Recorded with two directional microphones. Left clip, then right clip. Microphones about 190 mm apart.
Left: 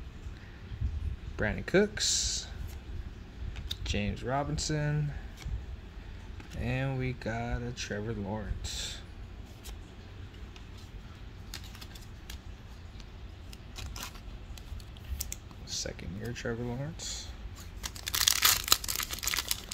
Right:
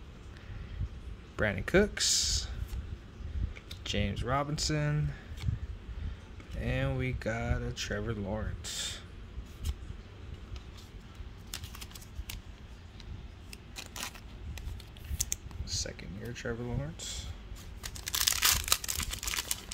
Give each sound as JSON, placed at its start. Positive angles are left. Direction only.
{"t": 1.3, "sound": "speech", "side_deg": -15}
{"t": 3.8, "sound": "speech", "side_deg": -10}
{"t": 6.6, "sound": "speech", "side_deg": -5}
{"t": 15.2, "sound": "typing", "side_deg": -20}
{"t": 15.6, "sound": "computer keyboard", "side_deg": 0}
{"t": 16.2, "sound": "speech", "side_deg": 10}
{"t": 16.6, "sound": "speech", "side_deg": -5}
{"t": 18.0, "sound": "a sound", "side_deg": 5}